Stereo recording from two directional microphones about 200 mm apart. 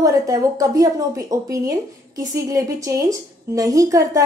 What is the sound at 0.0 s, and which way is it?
A woman's voice, 15° right (ahead or behind).